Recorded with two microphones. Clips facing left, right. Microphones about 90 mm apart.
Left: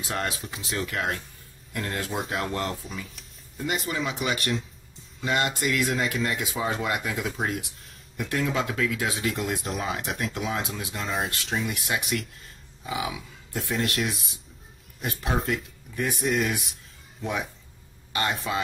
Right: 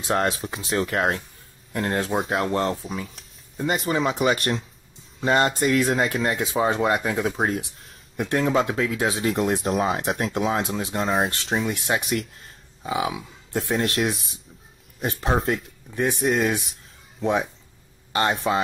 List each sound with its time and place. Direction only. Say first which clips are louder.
0.1 s speech: right 8 dB; 40° right (ahead or behind)